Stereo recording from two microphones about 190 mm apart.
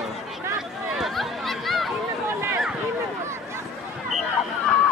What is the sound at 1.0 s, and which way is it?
Chatter, centre (ahead or behind).